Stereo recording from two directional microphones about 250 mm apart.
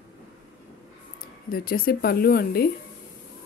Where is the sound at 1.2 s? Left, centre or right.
Left.